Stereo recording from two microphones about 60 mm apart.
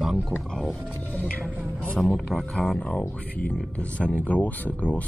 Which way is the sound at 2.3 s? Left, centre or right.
Centre.